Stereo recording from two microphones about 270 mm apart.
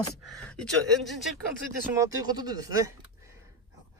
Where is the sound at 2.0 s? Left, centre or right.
Centre.